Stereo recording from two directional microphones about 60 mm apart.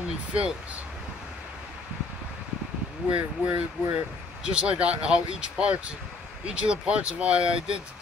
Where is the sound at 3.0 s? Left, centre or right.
Right.